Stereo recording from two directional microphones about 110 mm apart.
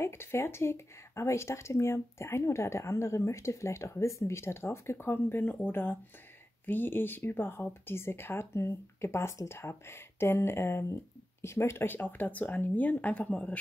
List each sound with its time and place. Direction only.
0.0 s speech: 20° left (ahead or behind)